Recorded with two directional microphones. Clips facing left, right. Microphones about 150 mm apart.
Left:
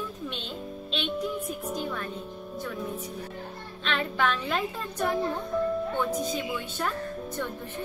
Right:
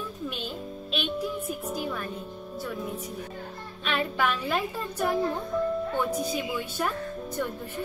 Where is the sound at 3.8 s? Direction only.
10° right (ahead or behind).